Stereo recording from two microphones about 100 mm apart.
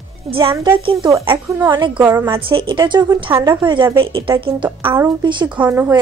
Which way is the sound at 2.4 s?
60° right (ahead or behind).